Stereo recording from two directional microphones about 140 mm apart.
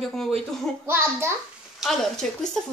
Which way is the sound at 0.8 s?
15° right (ahead or behind).